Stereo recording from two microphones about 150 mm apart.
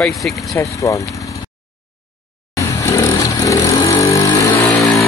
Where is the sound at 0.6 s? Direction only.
20° left (ahead or behind).